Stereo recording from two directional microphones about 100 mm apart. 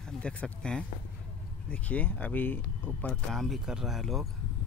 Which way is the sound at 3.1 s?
5° left (ahead or behind).